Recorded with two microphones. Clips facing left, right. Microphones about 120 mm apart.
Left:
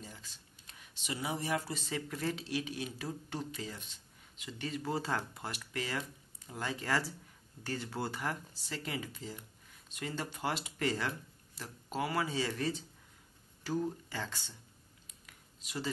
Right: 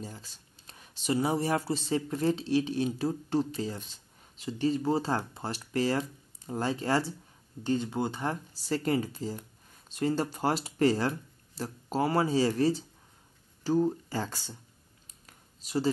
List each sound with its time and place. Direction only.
0.0 s speech: 35° right (ahead or behind)
8.6 s speech: 40° right (ahead or behind)
15.2 s a sound: 35° right (ahead or behind)